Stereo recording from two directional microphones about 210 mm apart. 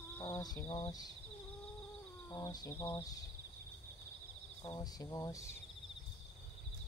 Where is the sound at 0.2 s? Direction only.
20° left (ahead or behind).